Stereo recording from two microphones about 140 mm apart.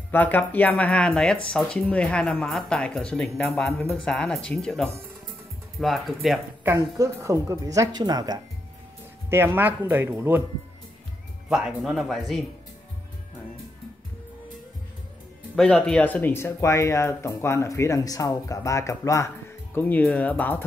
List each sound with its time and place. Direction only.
0.1 s speech: 10° left (ahead or behind)
6.6 s speech: 20° right (ahead or behind)
9.3 s speech: 15° right (ahead or behind)
11.4 s speech: 5° right (ahead or behind)
15.5 s speech: 5° left (ahead or behind)